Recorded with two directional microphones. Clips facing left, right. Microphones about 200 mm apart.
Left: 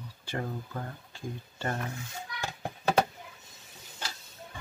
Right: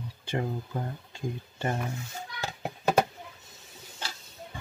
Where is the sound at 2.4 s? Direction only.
10° right (ahead or behind).